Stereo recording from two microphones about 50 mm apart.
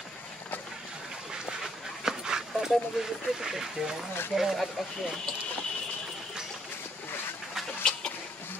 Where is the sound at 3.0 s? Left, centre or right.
Centre.